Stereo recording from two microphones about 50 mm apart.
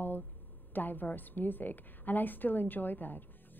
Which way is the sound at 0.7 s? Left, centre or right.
Left.